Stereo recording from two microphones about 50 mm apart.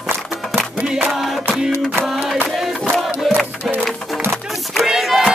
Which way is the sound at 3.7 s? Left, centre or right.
Right.